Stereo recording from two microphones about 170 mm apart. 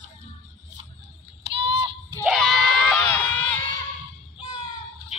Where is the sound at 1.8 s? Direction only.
25° right (ahead or behind).